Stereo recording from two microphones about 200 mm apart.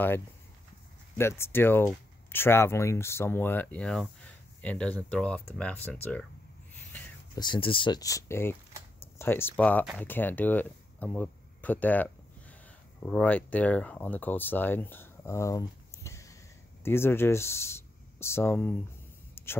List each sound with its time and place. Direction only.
1.1 s speech: 15° left (ahead or behind)
7.3 s speech: 25° left (ahead or behind)
19.4 s a sound: 10° left (ahead or behind)